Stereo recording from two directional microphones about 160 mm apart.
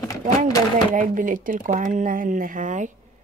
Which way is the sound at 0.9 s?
55° right (ahead or behind).